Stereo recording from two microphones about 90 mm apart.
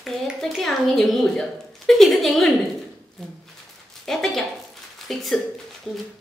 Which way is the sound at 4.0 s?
5° left (ahead or behind).